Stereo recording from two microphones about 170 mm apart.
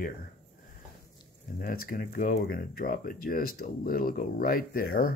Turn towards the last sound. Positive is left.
turn(degrees=60)  # may be behind; listen again after turning